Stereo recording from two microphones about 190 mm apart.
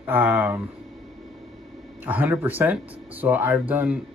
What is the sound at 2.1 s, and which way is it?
Speech, 10° right (ahead or behind).